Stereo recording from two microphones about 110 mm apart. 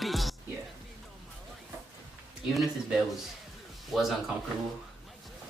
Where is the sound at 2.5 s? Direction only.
Centre (ahead or behind).